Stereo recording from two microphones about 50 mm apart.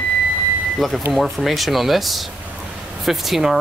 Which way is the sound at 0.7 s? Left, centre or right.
Centre.